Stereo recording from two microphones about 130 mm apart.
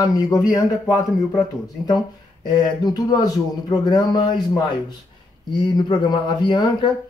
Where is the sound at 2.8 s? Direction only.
30° left (ahead or behind).